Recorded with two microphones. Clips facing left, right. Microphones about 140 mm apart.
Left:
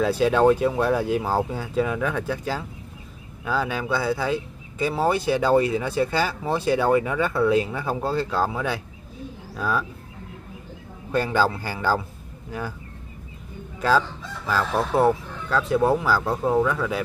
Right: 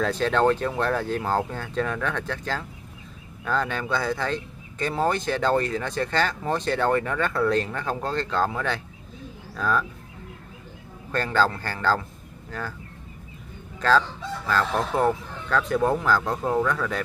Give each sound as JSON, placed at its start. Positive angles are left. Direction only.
{"t": 0.0, "sound": "speech", "side_deg": 10}
{"t": 11.1, "sound": "speech", "side_deg": 10}
{"t": 13.7, "sound": "crowing", "side_deg": 10}
{"t": 14.5, "sound": "speech", "side_deg": 10}